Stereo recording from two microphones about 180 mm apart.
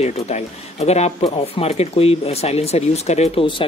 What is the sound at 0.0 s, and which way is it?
Speech, 35° left (ahead or behind).